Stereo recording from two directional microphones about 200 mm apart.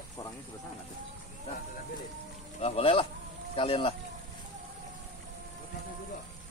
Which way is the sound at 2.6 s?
30° left (ahead or behind).